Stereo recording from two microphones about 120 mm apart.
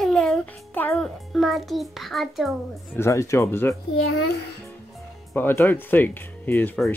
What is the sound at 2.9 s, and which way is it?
Speech, 25° left (ahead or behind).